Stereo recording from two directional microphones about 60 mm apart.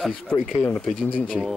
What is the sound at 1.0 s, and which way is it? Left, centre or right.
Speech, centre.